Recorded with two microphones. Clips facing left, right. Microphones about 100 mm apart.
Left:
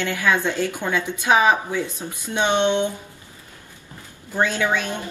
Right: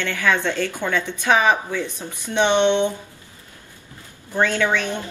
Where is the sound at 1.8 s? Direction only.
20° right (ahead or behind).